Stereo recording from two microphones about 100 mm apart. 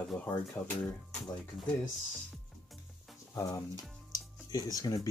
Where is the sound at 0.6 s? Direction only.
40° left (ahead or behind).